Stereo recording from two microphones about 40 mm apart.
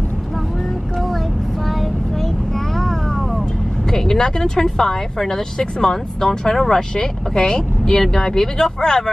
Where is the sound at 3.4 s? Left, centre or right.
Centre.